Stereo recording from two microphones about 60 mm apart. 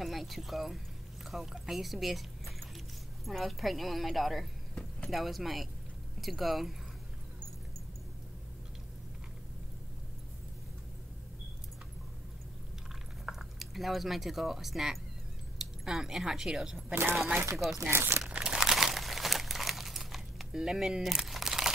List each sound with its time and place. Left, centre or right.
0.0 s speech: centre
13.2 s speech: centre
16.9 s speech: right
18.3 s crumpling: centre